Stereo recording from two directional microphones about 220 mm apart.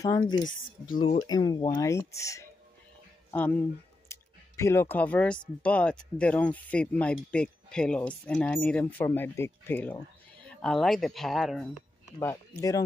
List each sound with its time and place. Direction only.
0.0 s speech: 15° left (ahead or behind); by 11.7 s centre (ahead or behind)
12.2 s speech: 10° left (ahead or behind)